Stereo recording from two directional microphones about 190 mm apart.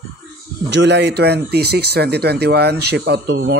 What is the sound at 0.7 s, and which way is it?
Speech, 65° right (ahead or behind).